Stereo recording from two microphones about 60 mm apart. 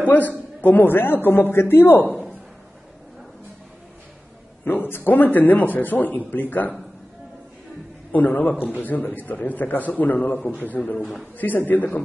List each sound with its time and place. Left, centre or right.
0.0 s a man's voice: left
4.6 s a man's voice: left
8.1 s a man's voice: left
10.8 s a man's voice: centre
11.3 s a man's voice: left